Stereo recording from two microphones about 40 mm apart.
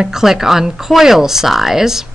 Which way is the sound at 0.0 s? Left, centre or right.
Centre.